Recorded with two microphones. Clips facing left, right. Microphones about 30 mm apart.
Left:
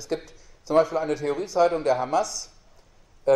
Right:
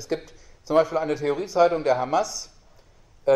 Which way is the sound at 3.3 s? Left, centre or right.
Centre.